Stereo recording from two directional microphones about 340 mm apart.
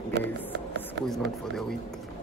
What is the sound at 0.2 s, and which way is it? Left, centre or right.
Speech, centre.